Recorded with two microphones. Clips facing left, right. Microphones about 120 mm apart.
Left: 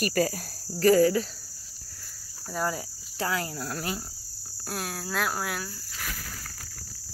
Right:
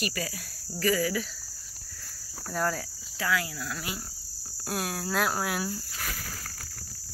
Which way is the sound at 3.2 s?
35° left (ahead or behind).